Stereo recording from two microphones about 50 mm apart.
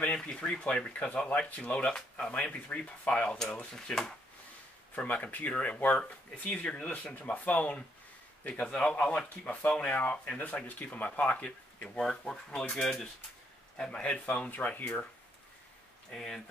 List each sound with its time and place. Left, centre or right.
0.0 s speech: centre
4.9 s speech: left
5.5 s speech: left
12.0 s speech: centre
13.7 s a man's voice: centre
14.2 s speech: left
16.1 s speech: centre